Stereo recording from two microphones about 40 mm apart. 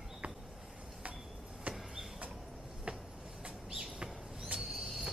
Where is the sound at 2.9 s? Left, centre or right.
Right.